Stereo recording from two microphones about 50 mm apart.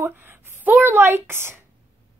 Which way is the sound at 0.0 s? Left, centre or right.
Right.